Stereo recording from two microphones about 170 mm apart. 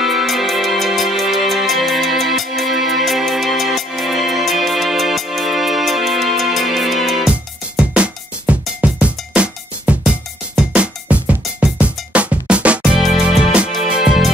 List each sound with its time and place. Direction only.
0.0 s music: centre (ahead or behind)